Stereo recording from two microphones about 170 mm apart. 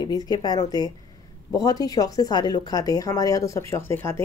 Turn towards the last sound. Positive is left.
turn(degrees=15)  # may be behind; listen again after turning